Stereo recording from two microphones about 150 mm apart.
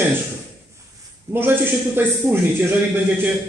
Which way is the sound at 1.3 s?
15° right (ahead or behind).